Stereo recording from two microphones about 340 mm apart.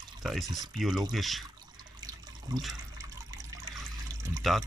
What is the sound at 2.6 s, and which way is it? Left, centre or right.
Water, centre.